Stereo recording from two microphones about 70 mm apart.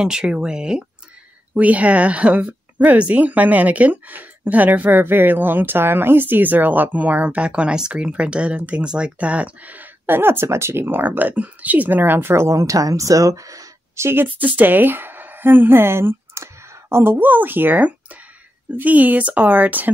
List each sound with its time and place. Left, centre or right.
0.0 s speech: centre; by 14.0 s right
14.0 s a woman's voice: right